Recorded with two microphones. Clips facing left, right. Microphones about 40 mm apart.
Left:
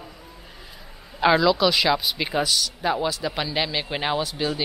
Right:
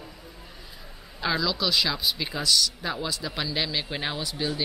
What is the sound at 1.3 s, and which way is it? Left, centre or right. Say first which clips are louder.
Speech: left 5 dB; centre.